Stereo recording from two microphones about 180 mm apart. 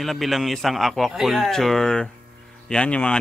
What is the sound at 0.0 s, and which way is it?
Speech, centre (ahead or behind).